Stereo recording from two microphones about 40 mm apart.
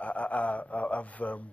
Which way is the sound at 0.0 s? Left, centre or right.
Left.